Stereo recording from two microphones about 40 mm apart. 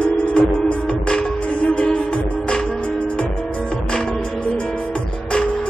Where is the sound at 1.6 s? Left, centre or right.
Left.